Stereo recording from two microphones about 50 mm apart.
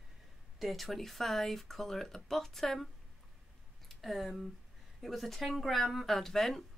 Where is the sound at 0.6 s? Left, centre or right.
Centre.